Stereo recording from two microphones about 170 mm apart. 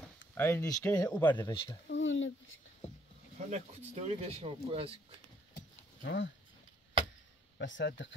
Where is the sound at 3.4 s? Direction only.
40° right (ahead or behind).